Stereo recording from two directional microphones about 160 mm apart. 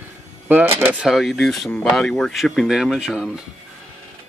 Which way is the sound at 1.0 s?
Centre (ahead or behind).